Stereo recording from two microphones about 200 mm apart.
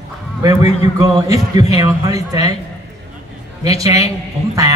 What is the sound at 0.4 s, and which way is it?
A man's voice, 15° right (ahead or behind).